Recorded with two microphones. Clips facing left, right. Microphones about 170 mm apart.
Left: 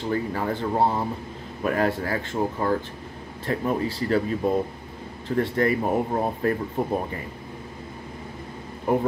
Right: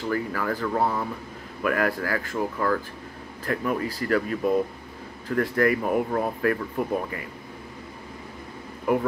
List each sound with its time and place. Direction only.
0.0 s speech: 25° left (ahead or behind)